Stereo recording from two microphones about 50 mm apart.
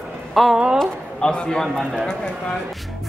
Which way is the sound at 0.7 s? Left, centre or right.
Centre.